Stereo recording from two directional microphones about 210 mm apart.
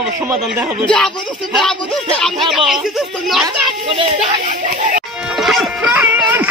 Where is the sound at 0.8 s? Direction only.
5° left (ahead or behind).